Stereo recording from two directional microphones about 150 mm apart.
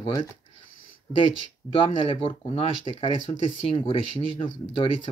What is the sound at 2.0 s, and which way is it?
Speech, 35° left (ahead or behind).